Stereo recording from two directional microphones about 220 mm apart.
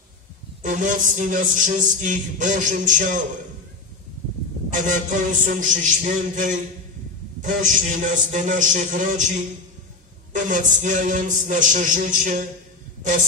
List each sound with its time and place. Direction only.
0.6 s music: 35° right (ahead or behind)
4.8 s music: 35° right (ahead or behind)
10.3 s music: 35° right (ahead or behind)